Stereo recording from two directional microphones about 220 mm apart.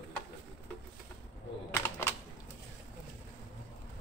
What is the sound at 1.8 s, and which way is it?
Typing, 10° left (ahead or behind).